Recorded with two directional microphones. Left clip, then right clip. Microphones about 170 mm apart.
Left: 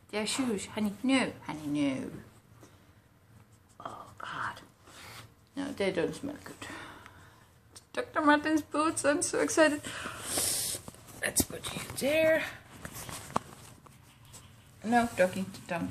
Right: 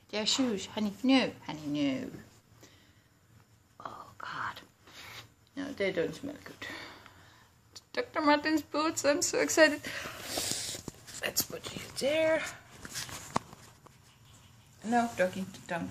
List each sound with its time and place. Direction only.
0.1 s a woman's voice: 35° right (ahead or behind)
3.8 s a sound: 10° right (ahead or behind)
5.5 s speech: centre (ahead or behind)
7.7 s a sound: 15° right (ahead or behind)
8.4 s speech: 15° right (ahead or behind)
14.8 s speech: centre (ahead or behind)